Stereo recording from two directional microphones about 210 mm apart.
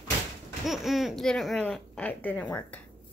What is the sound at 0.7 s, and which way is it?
Speech, centre (ahead or behind).